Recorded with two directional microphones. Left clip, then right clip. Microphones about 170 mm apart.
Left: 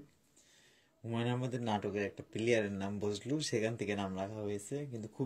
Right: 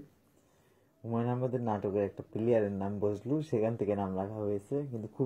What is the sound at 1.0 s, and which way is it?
Speech, 40° left (ahead or behind).